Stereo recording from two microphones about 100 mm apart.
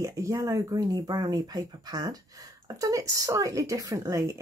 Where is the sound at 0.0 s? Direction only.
30° right (ahead or behind).